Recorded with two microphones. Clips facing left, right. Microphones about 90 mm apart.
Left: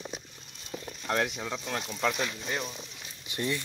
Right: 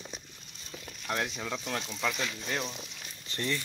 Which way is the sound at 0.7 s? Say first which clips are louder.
Left 4 dB; 15° left (ahead or behind).